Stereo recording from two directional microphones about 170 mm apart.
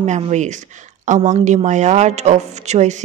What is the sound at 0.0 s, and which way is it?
Speech, 45° right (ahead or behind).